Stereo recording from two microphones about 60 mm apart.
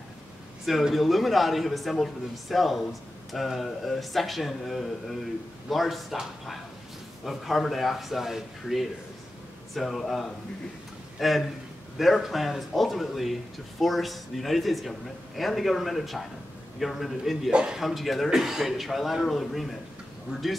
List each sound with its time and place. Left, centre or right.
0.7 s speech: centre
7.2 s a man's voice: centre
17.5 s a man's voice: centre
17.7 s speech: centre